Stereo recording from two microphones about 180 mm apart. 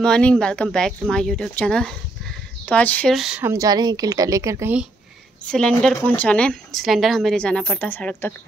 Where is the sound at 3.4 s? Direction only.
15° right (ahead or behind).